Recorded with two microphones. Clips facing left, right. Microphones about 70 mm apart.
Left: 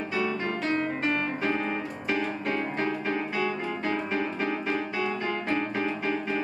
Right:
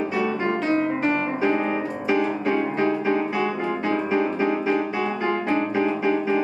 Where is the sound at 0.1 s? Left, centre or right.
Centre.